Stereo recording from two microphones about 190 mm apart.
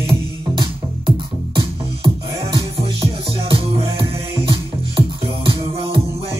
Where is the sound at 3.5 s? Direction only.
25° right (ahead or behind).